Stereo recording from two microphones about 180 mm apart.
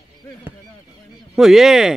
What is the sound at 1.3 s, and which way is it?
Speech, centre (ahead or behind).